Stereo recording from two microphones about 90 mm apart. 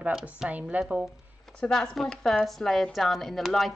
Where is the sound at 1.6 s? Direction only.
5° left (ahead or behind).